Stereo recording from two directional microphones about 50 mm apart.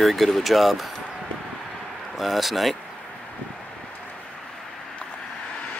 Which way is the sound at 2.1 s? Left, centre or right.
Centre.